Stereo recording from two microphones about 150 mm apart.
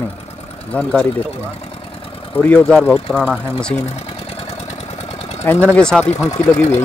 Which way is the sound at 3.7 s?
45° left (ahead or behind).